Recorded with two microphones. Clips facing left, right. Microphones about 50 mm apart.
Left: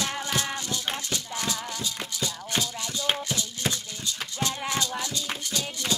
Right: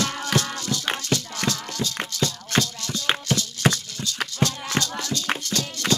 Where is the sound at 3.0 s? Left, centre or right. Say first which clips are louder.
Right 4 dB; right.